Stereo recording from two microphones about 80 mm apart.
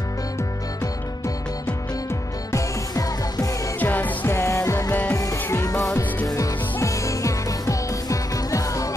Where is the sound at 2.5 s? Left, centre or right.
Left.